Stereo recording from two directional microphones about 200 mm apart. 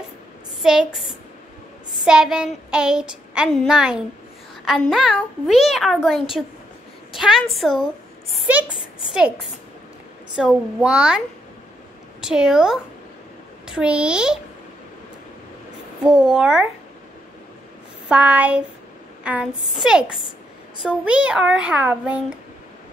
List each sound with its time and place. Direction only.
0.7 s a woman's voice: centre (ahead or behind)
10.3 s a woman's voice: 5° right (ahead or behind)
16.0 s a woman's voice: 5° right (ahead or behind)
18.0 s a child's voice: 5° right (ahead or behind)